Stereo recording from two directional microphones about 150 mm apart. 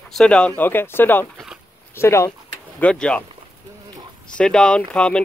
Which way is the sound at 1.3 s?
5° right (ahead or behind).